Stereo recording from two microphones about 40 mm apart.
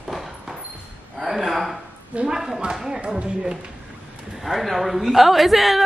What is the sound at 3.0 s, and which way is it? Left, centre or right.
Speech, right.